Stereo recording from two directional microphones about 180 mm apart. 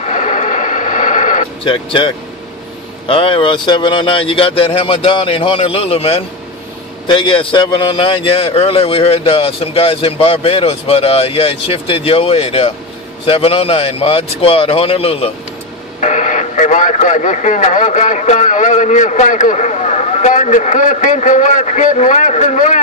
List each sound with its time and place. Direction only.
0.0 s a sound: 40° left (ahead or behind)
1.6 s a man's voice: 30° left (ahead or behind)
16.0 s speech: 40° left (ahead or behind)